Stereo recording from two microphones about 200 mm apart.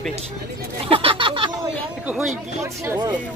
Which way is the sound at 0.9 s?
25° right (ahead or behind).